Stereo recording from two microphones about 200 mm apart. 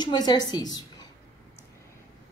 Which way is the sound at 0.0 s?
20° left (ahead or behind).